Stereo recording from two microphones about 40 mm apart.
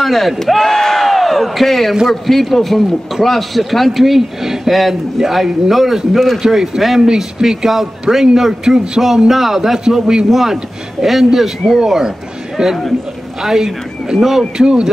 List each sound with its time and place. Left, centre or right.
0.0 s a man's voice: centre
6.5 s a man's voice: centre
7.0 s a man's voice: centre
10.3 s a man's voice: centre
14.6 s speech: right